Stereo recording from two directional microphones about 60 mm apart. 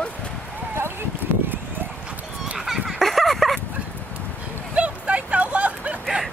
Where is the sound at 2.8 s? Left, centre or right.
Centre.